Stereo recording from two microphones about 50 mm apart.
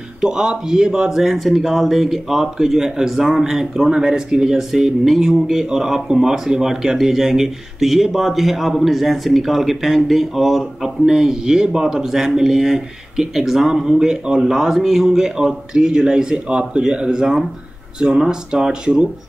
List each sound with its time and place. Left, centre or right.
0.2 s speech: centre
18.5 s speech: centre